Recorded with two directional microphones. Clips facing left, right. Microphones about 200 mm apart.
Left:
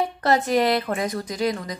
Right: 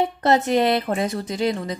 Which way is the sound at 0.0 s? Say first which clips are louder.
Right 2 dB; 25° right (ahead or behind).